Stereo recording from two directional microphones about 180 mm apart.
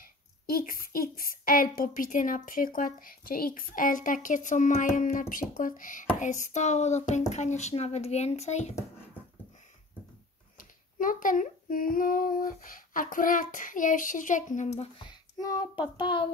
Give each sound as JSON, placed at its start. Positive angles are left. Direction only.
{"t": 0.0, "sound": "a woman's voice", "side_deg": 55}
{"t": 10.6, "sound": "a woman's voice", "side_deg": 50}
{"t": 15.0, "sound": "a sound", "side_deg": 25}
{"t": 15.8, "sound": "speech", "side_deg": 25}